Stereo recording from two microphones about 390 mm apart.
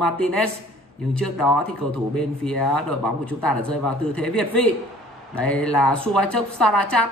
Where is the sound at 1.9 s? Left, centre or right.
Centre.